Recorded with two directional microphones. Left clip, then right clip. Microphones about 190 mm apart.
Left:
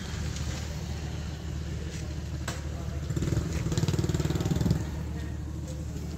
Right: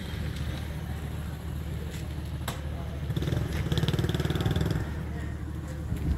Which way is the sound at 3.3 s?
65° left (ahead or behind).